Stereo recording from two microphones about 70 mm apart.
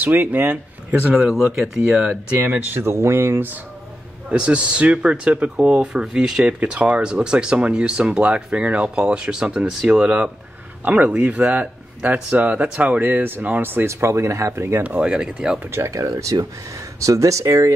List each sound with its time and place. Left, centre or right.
0.0 s speech: right
1.6 s speech: centre
2.7 s speech: right
4.3 s speech: centre; by 14.8 s right
14.8 s speech: centre
15.7 s speech: right